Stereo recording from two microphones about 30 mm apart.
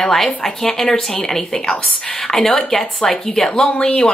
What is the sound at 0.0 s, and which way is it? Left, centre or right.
A woman's voice, centre.